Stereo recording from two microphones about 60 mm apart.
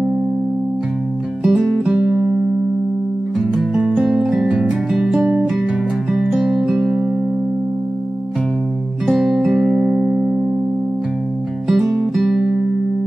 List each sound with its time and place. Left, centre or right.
1.4 s music: centre
1.9 s music: centre
3.3 s music: centre
9.0 s music: centre
11.6 s music: centre